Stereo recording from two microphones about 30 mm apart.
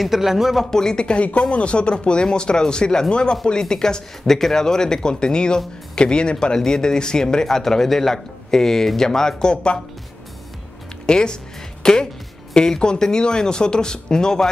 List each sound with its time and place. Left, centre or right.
0.0 s speech: centre
0.7 s speech: left
1.0 s speech: left; by 9.5 s centre
9.5 s speech: left
11.1 s speech: left